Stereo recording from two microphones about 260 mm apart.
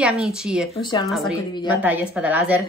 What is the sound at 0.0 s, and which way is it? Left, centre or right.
Speech, centre.